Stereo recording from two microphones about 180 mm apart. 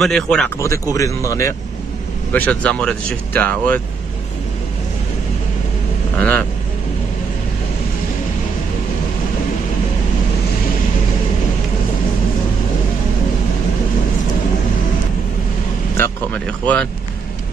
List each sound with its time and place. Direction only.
0.0 s speech: centre (ahead or behind)
0.9 s speech: 20° left (ahead or behind)
6.1 s speech: 10° left (ahead or behind)
16.0 s a sound: 5° left (ahead or behind)